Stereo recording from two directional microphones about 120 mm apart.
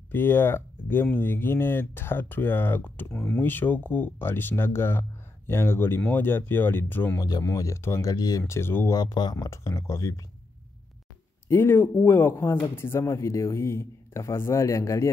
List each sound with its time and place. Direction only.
0.1 s speech: 20° left (ahead or behind)
7.2 s speech: 30° left (ahead or behind)
8.9 s speech: 35° left (ahead or behind)
11.4 s speech: 20° left (ahead or behind)